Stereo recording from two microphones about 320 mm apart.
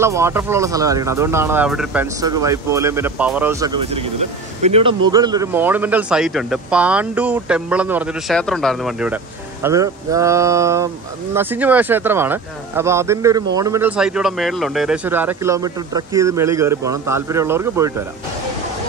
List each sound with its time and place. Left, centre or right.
0.0 s speech: centre